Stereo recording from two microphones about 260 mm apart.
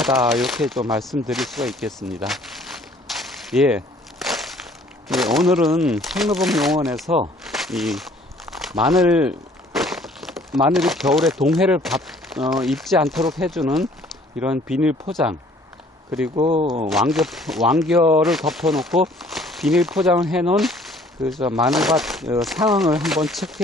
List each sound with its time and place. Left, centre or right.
0.0 s speech: centre
3.2 s a sound: centre
5.0 s speech: centre
7.1 s speech: centre
7.4 s speech: centre
16.3 s speech: right
16.9 s speech: centre